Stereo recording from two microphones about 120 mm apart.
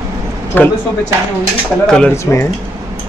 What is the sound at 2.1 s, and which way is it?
Speech, 20° left (ahead or behind).